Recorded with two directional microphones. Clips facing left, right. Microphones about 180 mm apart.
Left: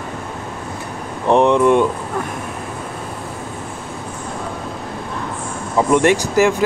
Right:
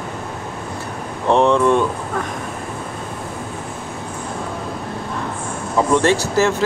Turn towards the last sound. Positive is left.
turn(degrees=15)  # may be behind; listen again after turning